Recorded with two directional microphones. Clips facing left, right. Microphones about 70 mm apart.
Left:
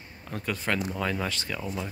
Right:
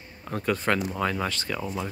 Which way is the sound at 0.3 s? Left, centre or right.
Centre.